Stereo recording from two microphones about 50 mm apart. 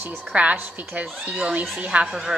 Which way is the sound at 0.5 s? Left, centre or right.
Right.